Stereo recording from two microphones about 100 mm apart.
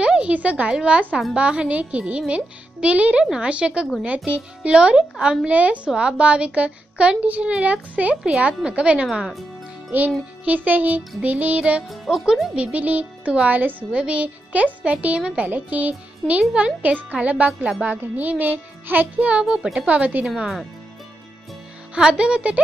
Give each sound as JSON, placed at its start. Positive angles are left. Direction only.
{"t": 0.0, "sound": "a woman's voice", "side_deg": -10}
{"t": 9.8, "sound": "music", "side_deg": -15}
{"t": 10.4, "sound": "a child's voice", "side_deg": -15}
{"t": 11.9, "sound": "speech", "side_deg": 0}
{"t": 12.5, "sound": "a child's voice", "side_deg": -15}
{"t": 21.9, "sound": "a child's voice", "side_deg": -10}